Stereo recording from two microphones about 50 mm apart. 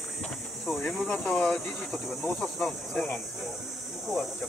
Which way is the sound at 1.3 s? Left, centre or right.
Centre.